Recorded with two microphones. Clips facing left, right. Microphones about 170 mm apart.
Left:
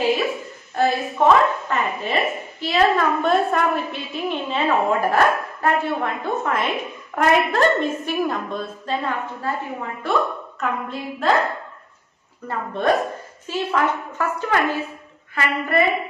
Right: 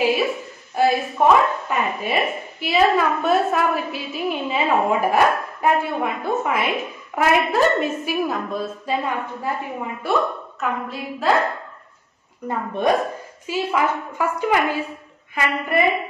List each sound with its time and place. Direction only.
0.0 s a sound: 10° right (ahead or behind)
0.7 s a woman's voice: 10° right (ahead or behind)
12.4 s a woman's voice: 15° right (ahead or behind)